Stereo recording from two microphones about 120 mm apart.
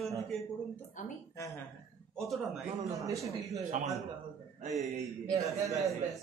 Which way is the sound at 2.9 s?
30° right (ahead or behind).